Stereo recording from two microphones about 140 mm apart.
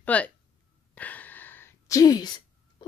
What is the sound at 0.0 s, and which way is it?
Speech, 10° left (ahead or behind).